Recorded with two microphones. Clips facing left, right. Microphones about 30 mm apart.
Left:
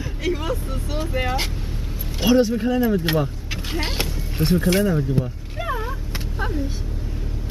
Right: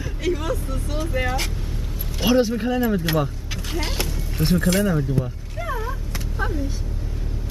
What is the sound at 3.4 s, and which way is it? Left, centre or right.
Vehicle, left.